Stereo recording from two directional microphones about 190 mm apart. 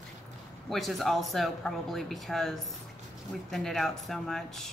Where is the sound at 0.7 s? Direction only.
Centre (ahead or behind).